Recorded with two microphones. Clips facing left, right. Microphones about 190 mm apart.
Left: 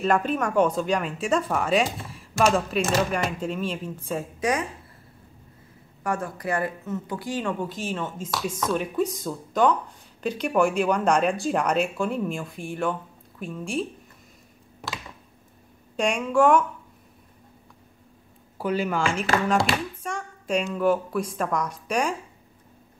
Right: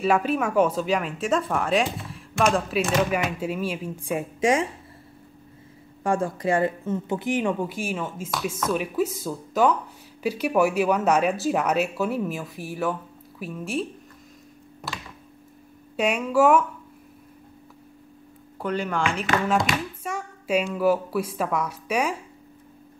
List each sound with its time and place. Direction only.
0.0 s speech: 5° right (ahead or behind)
4.4 s speech: 25° right (ahead or behind)
6.0 s speech: 30° right (ahead or behind); by 13.8 s 5° right (ahead or behind)
16.0 s speech: 5° right (ahead or behind)
18.6 s a woman's voice: 5° left (ahead or behind)